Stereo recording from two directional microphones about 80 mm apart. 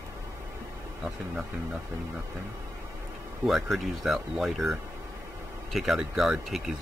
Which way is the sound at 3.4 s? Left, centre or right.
Centre.